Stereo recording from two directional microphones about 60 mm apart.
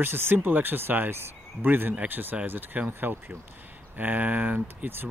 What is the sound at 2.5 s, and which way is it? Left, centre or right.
Speech, right.